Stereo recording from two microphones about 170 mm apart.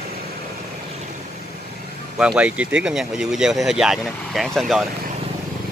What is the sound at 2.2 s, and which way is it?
Speech, 5° right (ahead or behind).